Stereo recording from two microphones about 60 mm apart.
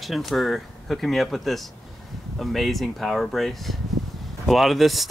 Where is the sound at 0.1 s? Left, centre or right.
Centre.